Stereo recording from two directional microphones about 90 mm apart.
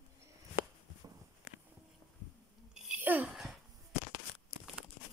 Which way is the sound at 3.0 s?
20° right (ahead or behind).